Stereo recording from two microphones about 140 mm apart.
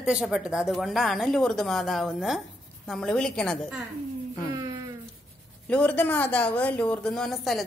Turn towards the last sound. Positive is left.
turn(degrees=0)  # may be behind; listen again after turning